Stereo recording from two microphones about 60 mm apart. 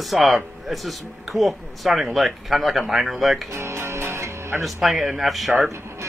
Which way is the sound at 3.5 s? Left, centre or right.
Right.